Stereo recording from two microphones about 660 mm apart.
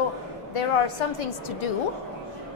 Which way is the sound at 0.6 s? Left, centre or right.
Left.